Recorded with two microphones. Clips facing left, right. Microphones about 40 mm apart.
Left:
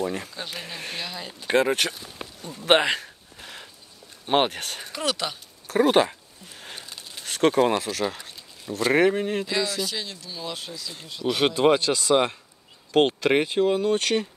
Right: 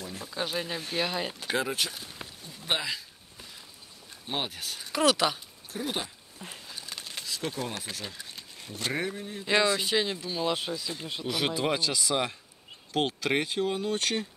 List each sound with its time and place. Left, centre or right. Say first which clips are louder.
0.0 s speech: left 12 dB; left
1.5 s speech: left 9 dB; left
2.4 s a sound: left 11 dB; left
4.3 s speech: left 11 dB; left
4.9 s speech: right 4 dB; centre
5.7 s speech: left 15 dB; left
6.6 s a sound: left 4 dB; left
7.2 s speech: left 15 dB; left
8.6 s speech: left 10 dB; left
8.9 s speech: left 15 dB; left
9.5 s speech: right 2 dB; right
11.2 s speech: left 9 dB; left